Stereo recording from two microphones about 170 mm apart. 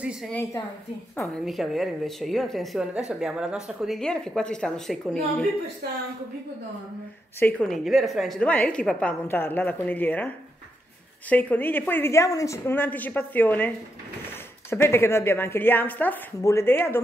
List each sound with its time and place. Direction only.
0.0 s a woman's voice: 5° right (ahead or behind)
1.4 s a woman's voice: centre (ahead or behind)
7.3 s a woman's voice: 10° left (ahead or behind)